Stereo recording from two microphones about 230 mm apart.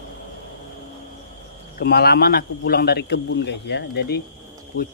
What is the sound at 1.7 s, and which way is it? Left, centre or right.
A man's voice, left.